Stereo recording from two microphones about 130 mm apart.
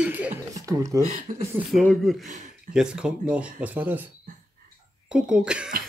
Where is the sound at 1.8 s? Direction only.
5° left (ahead or behind).